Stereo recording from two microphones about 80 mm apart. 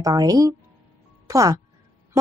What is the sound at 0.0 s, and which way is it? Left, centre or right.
A woman's voice, right.